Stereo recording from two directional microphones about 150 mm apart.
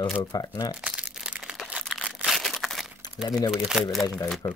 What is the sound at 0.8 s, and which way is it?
Crumpling, 5° right (ahead or behind).